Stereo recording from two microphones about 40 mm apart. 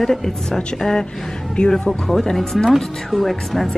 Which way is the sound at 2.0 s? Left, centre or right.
Centre.